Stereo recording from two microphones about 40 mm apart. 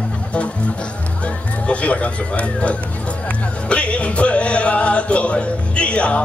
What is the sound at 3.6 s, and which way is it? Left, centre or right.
Music, left.